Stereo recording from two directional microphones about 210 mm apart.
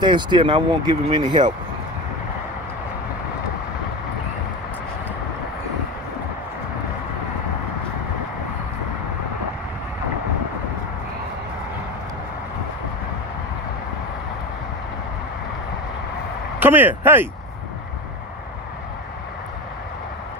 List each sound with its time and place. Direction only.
0.0 s speech: 20° right (ahead or behind)
16.5 s speech: 10° right (ahead or behind)